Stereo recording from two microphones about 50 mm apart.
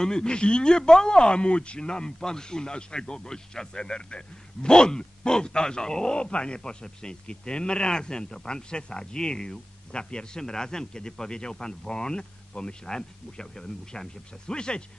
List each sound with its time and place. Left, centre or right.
0.0 s speech: centre